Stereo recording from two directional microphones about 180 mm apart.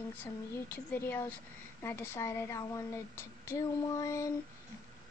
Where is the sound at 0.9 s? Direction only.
10° left (ahead or behind).